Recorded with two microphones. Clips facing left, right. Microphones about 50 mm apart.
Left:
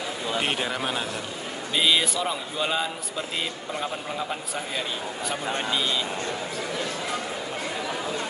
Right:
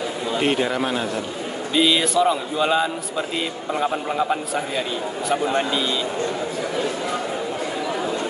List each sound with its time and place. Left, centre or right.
0.4 s speech: centre
3.9 s a man's voice: right